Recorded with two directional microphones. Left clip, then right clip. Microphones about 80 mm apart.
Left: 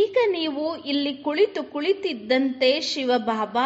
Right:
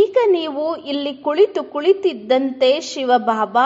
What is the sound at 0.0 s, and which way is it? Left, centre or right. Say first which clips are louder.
A woman's voice: right 6 dB; right.